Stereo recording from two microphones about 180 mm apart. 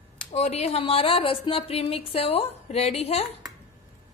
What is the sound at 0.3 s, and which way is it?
Speech, 35° left (ahead or behind).